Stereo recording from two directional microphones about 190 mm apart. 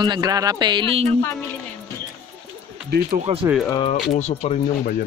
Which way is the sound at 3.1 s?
35° right (ahead or behind).